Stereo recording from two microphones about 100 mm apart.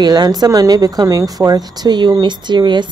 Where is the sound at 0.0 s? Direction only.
40° right (ahead or behind).